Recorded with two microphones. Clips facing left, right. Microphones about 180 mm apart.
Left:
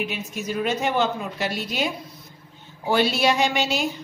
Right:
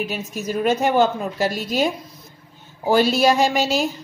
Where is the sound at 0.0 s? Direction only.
40° right (ahead or behind).